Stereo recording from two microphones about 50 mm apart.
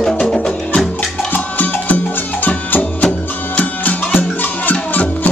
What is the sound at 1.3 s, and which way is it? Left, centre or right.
Music, left.